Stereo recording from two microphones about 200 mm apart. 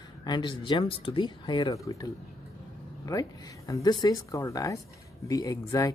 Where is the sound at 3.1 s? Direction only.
20° left (ahead or behind).